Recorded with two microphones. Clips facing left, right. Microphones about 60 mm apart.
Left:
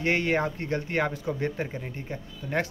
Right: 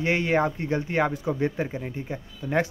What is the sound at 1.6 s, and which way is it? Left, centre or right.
Speech, centre.